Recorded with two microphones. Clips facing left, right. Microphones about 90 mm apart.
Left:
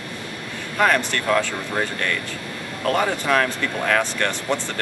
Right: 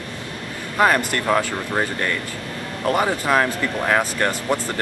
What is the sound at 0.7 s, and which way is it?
Speech, 10° right (ahead or behind).